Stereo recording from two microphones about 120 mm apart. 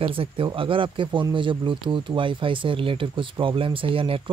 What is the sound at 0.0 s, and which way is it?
Speech, 50° right (ahead or behind).